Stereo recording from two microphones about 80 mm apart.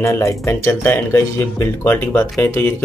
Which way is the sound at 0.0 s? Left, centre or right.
Left.